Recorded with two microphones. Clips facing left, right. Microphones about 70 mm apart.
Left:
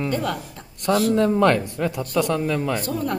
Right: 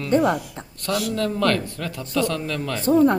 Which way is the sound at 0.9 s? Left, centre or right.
Left.